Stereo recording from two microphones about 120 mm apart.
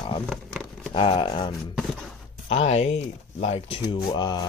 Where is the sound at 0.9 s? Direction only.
45° left (ahead or behind).